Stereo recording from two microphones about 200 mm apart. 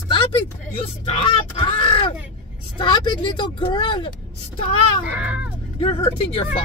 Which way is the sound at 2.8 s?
25° left (ahead or behind).